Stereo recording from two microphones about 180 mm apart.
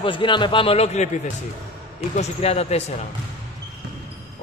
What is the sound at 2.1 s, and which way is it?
Speech, 35° left (ahead or behind).